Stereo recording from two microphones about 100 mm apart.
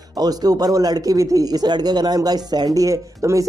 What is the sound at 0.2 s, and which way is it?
A man's voice, 40° right (ahead or behind).